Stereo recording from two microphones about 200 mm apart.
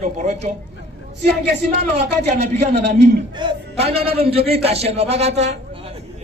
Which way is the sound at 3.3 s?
25° right (ahead or behind).